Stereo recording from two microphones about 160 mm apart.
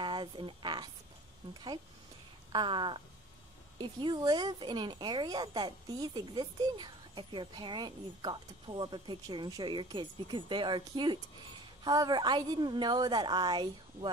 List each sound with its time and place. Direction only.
0.0 s speech: 30° right (ahead or behind)
2.5 s a woman's voice: 30° right (ahead or behind)